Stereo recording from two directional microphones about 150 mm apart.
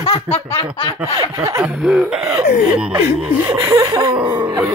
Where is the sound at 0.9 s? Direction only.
10° right (ahead or behind).